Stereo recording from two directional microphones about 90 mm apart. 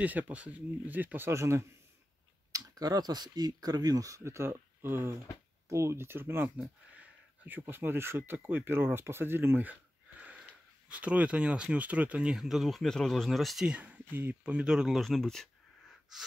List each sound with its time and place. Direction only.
0.0 s speech: 15° right (ahead or behind); by 1.7 s 35° right (ahead or behind)
2.5 s speech: 45° right (ahead or behind); by 6.5 s 25° right (ahead or behind)
6.5 s speech: 15° right (ahead or behind); by 13.7 s centre (ahead or behind)
13.7 s speech: 15° right (ahead or behind)